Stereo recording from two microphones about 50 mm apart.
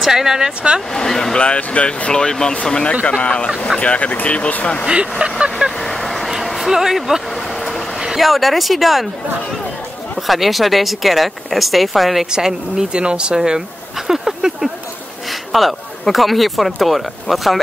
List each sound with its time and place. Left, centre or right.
0.0 s speech: centre
0.9 s speech: centre
1.4 s speech: left
3.1 s speech: left
5.2 s vehicle: right
5.8 s vehicle: centre
8.0 s speech: centre
10.1 s speech: centre
12.3 s speech: centre
14.0 s a sound: centre
15.5 s speech: centre